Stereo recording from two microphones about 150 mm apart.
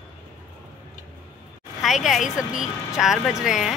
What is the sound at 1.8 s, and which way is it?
A woman's voice, centre (ahead or behind).